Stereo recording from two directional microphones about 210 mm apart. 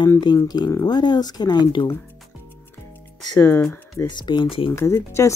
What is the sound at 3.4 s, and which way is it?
Speech, 10° left (ahead or behind).